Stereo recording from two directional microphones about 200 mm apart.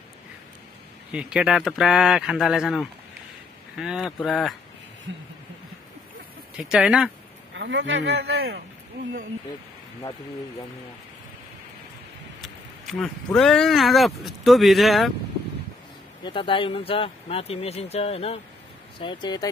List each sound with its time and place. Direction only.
1.1 s speech: 5° right (ahead or behind)
6.5 s speech: centre (ahead or behind)
7.5 s speech: 65° right (ahead or behind)
12.4 s speech: centre (ahead or behind)
16.3 s speech: 25° left (ahead or behind)